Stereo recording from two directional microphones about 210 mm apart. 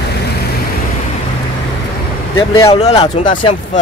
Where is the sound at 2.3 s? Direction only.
20° left (ahead or behind).